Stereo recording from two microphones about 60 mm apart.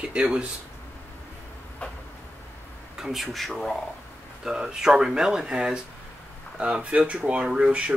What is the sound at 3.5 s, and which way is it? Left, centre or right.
Speech, centre.